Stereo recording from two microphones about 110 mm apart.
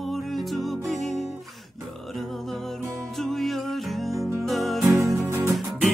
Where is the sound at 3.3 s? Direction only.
Centre (ahead or behind).